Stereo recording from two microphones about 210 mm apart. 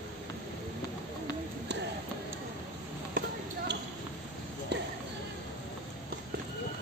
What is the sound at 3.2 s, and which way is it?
Basketball bounce, 40° right (ahead or behind).